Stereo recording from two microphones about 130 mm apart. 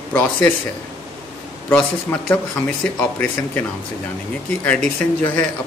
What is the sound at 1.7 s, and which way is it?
Speech, 10° left (ahead or behind).